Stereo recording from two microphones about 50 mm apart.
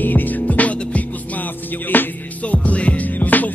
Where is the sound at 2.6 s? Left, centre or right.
Left.